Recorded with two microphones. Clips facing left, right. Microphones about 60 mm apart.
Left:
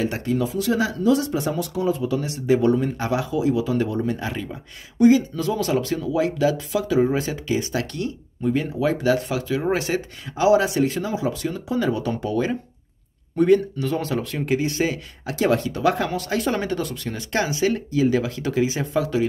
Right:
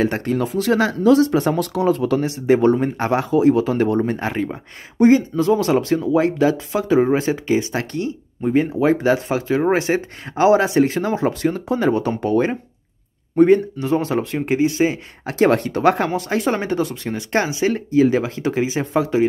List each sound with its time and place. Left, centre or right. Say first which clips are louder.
0.0 s speech: right 3 dB; right
2.4 s speech: right 3 dB; right
15.2 s speech: right 4 dB; right